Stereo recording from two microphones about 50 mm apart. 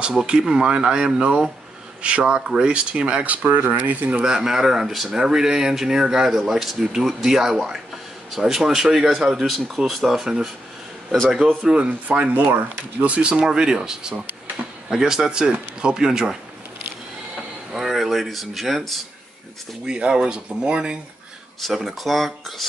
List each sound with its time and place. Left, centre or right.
0.1 s speech: centre
3.4 s speech: right
4.1 s speech: centre
11.6 s speech: right
17.7 s speech: centre
19.9 s speech: centre
21.7 s speech: centre